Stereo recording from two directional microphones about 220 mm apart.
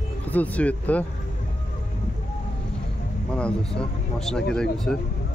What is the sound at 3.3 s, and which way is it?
Speech, 5° left (ahead or behind).